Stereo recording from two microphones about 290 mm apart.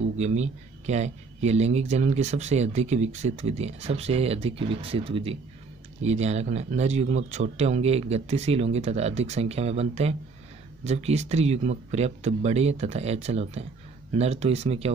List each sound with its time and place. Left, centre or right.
0.2 s speech: right